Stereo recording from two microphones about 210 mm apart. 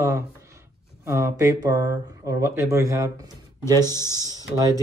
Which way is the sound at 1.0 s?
10° right (ahead or behind).